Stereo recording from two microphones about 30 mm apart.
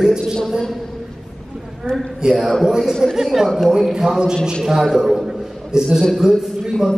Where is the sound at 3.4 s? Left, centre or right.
Centre.